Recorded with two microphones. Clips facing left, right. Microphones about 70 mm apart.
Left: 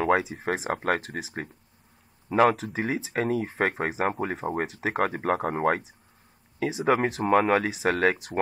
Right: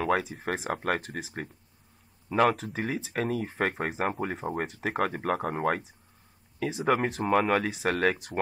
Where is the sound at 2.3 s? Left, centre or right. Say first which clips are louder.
Left 3 dB; centre.